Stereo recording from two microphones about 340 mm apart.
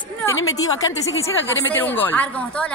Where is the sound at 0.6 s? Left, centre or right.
Centre.